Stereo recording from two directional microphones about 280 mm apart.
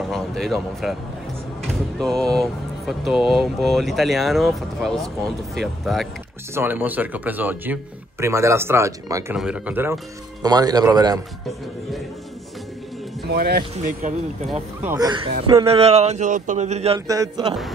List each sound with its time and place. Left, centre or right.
0.1 s speech: centre
2.0 s speech: centre
13.3 s speech: right
14.8 s a man's voice: centre